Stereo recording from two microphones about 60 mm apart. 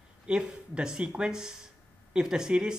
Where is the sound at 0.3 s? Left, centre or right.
Centre.